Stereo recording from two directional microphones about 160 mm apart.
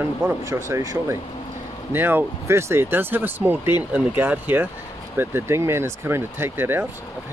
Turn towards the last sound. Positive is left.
turn(degrees=-15)  # may be behind; listen again after turning